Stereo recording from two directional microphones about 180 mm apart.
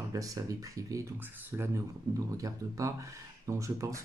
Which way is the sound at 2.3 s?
20° right (ahead or behind).